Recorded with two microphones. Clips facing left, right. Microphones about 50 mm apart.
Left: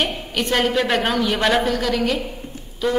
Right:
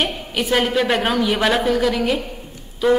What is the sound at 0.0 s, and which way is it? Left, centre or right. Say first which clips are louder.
A woman's voice: right 1 dB; centre.